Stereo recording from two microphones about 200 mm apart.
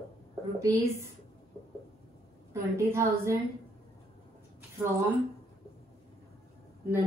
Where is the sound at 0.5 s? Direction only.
15° right (ahead or behind).